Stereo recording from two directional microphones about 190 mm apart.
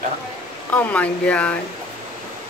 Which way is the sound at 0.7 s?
5° left (ahead or behind).